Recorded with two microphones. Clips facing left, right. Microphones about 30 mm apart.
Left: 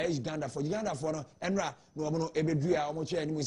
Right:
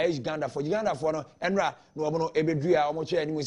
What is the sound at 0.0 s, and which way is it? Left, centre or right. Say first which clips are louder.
Speech: right 6 dB; right.